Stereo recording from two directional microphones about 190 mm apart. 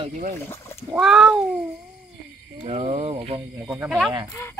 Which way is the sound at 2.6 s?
35° right (ahead or behind).